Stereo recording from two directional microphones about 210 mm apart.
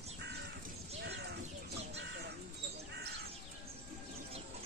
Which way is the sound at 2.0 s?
50° right (ahead or behind).